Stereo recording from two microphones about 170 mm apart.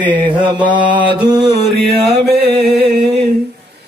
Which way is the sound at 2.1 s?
75° right (ahead or behind).